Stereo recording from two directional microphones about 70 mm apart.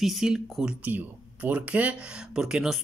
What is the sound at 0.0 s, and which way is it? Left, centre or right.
Speech, centre.